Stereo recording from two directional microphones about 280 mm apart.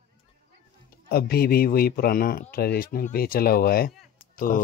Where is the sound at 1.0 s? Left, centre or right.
Left.